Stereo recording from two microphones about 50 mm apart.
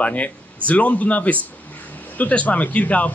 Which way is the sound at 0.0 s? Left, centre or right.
Left.